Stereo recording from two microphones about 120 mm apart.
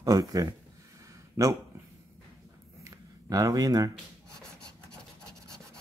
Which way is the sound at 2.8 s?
30° right (ahead or behind).